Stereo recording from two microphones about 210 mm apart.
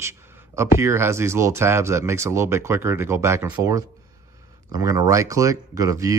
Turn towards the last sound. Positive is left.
turn(degrees=-15)  # may be behind; listen again after turning